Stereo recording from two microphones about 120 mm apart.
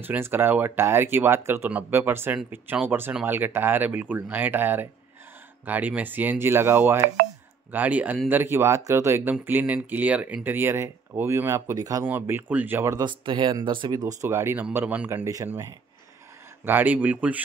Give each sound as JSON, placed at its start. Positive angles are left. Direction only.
{"t": 0.0, "sound": "speech", "side_deg": -15}
{"t": 12.0, "sound": "speech", "side_deg": -15}
{"t": 13.0, "sound": "speech", "side_deg": -45}
{"t": 16.6, "sound": "speech", "side_deg": -15}